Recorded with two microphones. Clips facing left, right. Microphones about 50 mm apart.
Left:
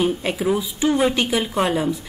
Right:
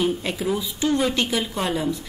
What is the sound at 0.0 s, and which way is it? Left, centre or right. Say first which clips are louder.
A woman's voice: left 3 dB; centre.